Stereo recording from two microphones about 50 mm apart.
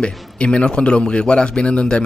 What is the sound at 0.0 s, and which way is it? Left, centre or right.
A man's voice, left.